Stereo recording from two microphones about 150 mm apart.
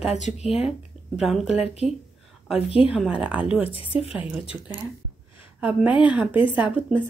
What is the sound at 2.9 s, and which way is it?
Speech, 5° right (ahead or behind).